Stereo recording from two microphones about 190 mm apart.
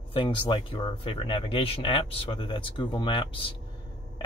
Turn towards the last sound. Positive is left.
turn(degrees=25)  # may be behind; listen again after turning